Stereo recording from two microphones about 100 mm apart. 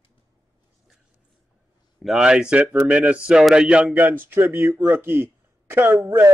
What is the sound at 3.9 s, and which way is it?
Speech, 20° right (ahead or behind).